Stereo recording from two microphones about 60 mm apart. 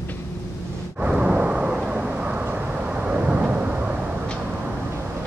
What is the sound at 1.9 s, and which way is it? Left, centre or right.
Vehicle, right.